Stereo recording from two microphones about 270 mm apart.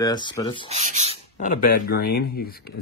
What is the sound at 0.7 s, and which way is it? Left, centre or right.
Speech, right.